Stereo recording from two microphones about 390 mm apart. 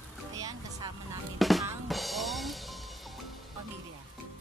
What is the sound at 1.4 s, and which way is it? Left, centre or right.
Drum, centre.